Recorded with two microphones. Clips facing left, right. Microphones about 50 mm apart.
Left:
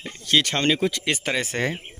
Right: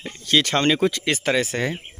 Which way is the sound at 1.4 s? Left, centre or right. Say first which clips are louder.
Right 1 dB; left.